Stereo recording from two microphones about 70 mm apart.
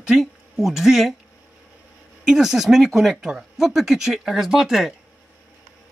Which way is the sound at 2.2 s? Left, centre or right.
Centre.